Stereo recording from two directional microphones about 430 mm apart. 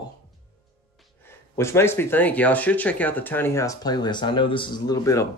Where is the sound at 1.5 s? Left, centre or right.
Centre.